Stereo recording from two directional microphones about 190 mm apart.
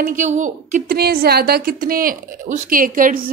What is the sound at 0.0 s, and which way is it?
A woman's voice, 45° right (ahead or behind).